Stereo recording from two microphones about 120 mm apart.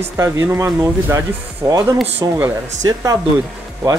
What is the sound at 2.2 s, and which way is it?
Speech, 30° right (ahead or behind).